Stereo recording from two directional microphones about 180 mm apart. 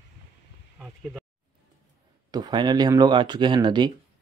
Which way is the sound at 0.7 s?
5° right (ahead or behind).